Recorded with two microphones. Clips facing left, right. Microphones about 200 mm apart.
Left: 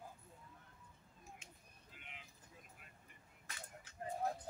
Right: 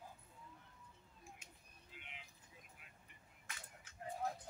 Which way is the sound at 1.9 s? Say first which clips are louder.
Right 2 dB; 45° left (ahead or behind).